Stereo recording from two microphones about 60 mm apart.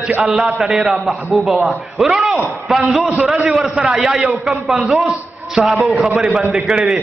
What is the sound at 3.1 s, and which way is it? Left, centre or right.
Speech, centre.